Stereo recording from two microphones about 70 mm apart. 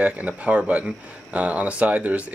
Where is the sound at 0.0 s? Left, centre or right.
Centre.